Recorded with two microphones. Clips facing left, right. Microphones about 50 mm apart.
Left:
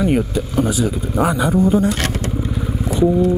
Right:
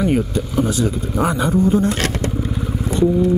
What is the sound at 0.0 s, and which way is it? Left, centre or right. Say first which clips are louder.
Speech: left 1 dB; centre.